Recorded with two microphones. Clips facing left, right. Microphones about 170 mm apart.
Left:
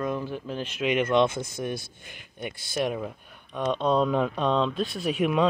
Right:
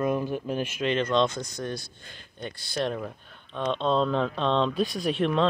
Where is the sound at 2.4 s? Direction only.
10° left (ahead or behind).